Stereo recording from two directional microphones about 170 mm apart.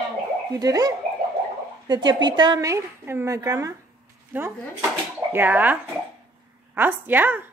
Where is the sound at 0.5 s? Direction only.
20° right (ahead or behind).